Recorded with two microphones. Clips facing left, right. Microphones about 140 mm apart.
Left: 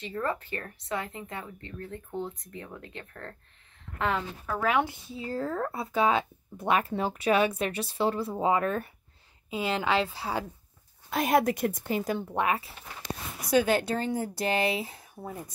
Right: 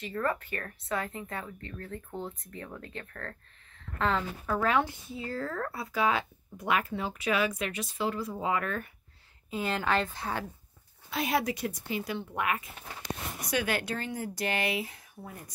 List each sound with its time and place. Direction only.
0.0 s speech: 20° left (ahead or behind)
4.5 s a woman's voice: 5° left (ahead or behind); by 8.8 s 30° left (ahead or behind)
9.5 s a woman's voice: 5° left (ahead or behind)
11.1 s a woman's voice: 50° left (ahead or behind)
12.4 s speech: 30° left (ahead or behind)